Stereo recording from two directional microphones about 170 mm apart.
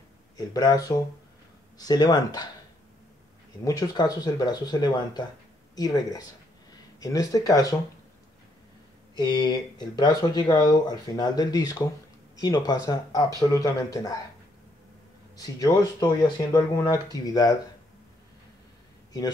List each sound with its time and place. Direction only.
0.4 s speech: 25° left (ahead or behind)
3.6 s speech: 20° left (ahead or behind)
9.1 s speech: 25° left (ahead or behind)
15.3 s speech: 20° left (ahead or behind)